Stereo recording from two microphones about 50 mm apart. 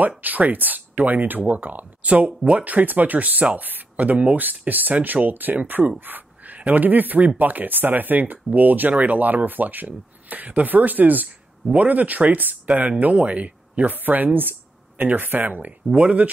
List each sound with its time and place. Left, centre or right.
0.2 s speech: right
15.9 s speech: right